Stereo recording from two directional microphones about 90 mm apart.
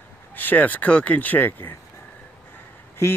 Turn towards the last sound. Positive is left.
turn(degrees=30)  # may be behind; listen again after turning